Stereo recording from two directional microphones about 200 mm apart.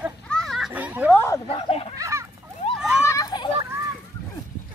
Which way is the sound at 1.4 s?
30° left (ahead or behind).